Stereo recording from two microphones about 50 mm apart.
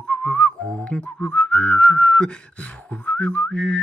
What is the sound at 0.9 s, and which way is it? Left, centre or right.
Whistling, left.